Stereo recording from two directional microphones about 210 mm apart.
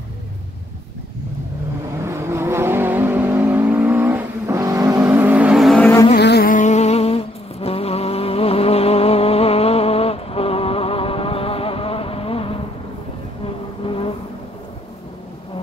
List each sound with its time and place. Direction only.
2.0 s vehicle: 10° right (ahead or behind); by 6.0 s 10° left (ahead or behind)
6.1 s insect: 50° left (ahead or behind); by 12.5 s 25° left (ahead or behind)
13.8 s vehicle: 25° left (ahead or behind)